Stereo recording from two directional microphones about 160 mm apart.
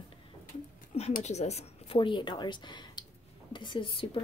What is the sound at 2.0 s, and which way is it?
Speech, 30° left (ahead or behind).